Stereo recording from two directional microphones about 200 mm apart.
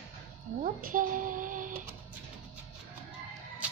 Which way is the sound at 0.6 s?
45° right (ahead or behind).